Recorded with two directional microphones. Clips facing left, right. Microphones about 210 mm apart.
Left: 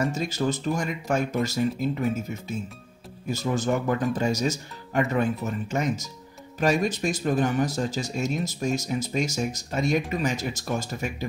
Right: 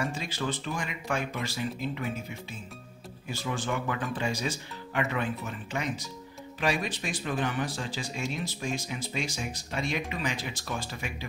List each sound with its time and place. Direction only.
0.0 s speech: 45° left (ahead or behind)